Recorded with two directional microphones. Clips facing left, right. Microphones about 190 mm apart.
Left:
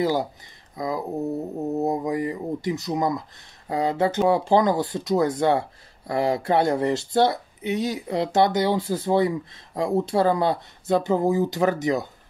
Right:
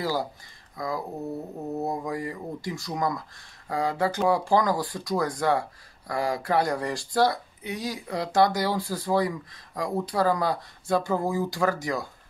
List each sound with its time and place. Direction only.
0.0 s speech: 20° left (ahead or behind)